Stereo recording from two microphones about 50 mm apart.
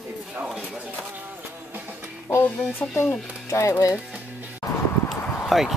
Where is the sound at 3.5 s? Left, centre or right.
Left.